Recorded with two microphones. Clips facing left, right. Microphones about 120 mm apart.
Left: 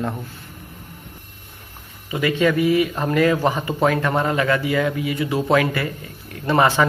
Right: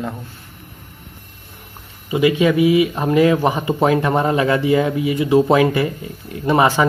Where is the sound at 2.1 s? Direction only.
20° right (ahead or behind).